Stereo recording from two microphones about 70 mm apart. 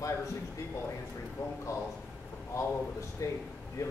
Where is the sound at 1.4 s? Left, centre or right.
Left.